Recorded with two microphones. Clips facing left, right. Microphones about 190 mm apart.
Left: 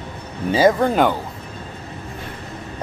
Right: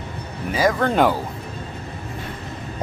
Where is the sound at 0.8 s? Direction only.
Centre (ahead or behind).